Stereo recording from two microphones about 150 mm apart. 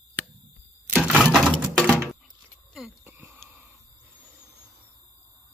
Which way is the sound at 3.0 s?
15° right (ahead or behind).